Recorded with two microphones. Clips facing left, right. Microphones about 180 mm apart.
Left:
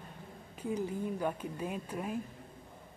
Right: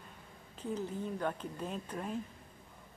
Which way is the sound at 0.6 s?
10° left (ahead or behind).